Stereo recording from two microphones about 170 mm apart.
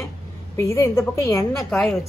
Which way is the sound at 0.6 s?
15° left (ahead or behind).